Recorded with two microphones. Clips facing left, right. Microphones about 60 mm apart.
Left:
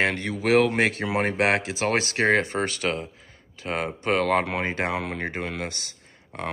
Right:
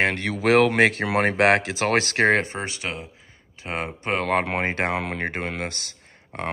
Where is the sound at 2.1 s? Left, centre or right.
Right.